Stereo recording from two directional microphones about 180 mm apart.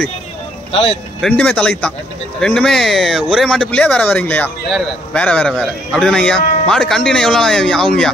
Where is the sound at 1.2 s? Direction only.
5° left (ahead or behind).